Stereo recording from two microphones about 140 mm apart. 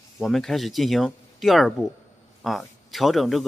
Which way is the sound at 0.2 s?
Centre (ahead or behind).